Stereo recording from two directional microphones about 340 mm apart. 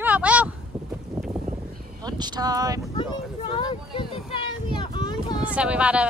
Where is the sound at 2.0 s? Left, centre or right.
Centre.